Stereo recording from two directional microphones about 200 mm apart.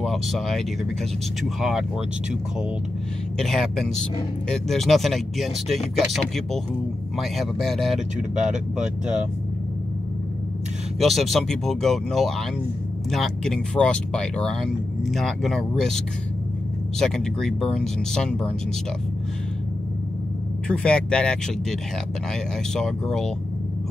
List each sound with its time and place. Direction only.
0.0 s speech: centre (ahead or behind)
3.3 s speech: centre (ahead or behind)
11.0 s speech: centre (ahead or behind)
17.0 s speech: centre (ahead or behind)
20.6 s speech: 5° left (ahead or behind)